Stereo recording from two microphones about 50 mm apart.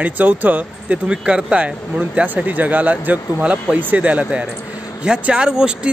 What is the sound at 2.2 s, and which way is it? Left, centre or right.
A man's voice, right.